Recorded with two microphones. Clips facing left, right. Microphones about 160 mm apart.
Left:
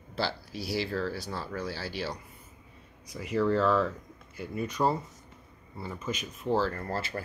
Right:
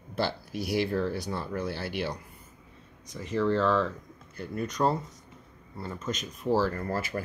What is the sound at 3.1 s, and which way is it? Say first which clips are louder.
Speech: even; 5° left (ahead or behind).